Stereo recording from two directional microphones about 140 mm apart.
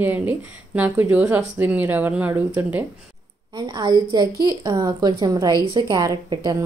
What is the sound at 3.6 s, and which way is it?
A woman's voice, 30° right (ahead or behind).